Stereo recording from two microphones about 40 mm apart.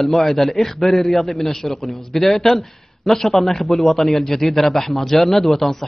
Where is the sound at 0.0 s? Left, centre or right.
Centre.